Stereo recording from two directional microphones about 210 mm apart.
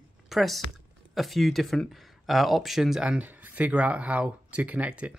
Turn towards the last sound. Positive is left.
turn(degrees=-5)  # may be behind; listen again after turning